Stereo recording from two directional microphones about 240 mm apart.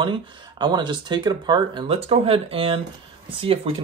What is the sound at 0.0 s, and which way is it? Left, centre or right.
Speech, centre.